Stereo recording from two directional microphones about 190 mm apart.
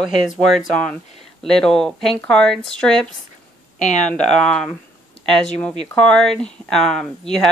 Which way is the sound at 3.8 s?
40° left (ahead or behind).